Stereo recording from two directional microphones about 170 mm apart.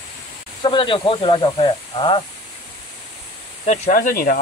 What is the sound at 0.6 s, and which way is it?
Speech, 30° left (ahead or behind).